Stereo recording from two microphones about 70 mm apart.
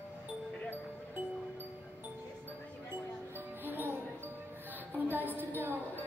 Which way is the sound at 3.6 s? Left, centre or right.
Right.